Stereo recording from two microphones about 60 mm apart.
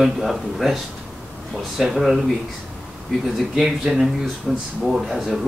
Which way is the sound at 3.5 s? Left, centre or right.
Centre.